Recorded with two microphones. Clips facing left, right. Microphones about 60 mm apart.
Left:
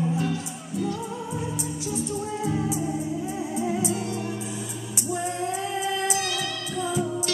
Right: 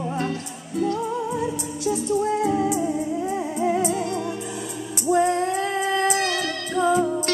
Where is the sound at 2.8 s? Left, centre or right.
Right.